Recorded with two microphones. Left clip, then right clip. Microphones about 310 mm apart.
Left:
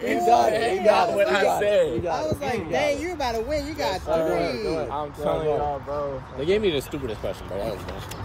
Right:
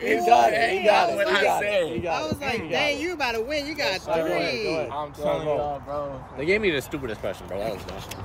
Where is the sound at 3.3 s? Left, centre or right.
Centre.